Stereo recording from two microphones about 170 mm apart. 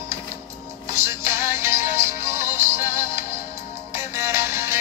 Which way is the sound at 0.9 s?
15° right (ahead or behind).